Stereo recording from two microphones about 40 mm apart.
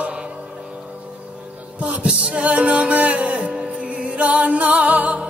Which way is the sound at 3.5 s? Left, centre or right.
Centre.